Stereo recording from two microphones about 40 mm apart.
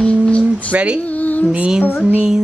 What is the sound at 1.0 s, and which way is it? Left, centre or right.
Music, left.